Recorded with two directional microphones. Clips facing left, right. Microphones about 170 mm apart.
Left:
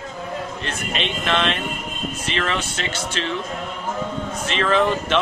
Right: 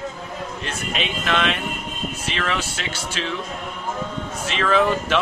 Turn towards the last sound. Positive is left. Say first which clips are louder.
# even
turn(degrees=-5)  # may be behind; listen again after turning